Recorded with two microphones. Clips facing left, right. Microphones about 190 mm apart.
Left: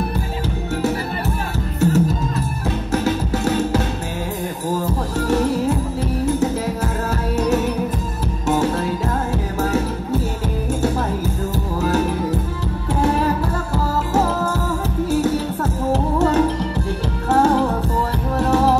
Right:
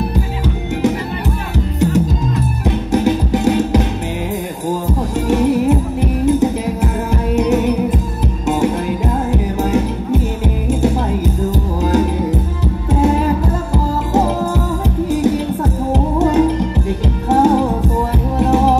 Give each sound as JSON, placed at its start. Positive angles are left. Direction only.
{"t": 1.8, "sound": "music", "side_deg": -15}
{"t": 4.8, "sound": "music", "side_deg": -15}
{"t": 15.0, "sound": "music", "side_deg": -15}